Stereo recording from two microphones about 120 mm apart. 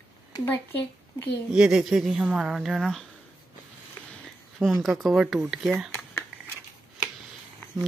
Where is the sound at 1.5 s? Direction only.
5° right (ahead or behind).